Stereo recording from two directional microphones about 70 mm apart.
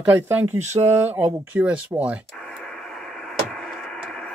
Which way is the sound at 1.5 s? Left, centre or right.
Right.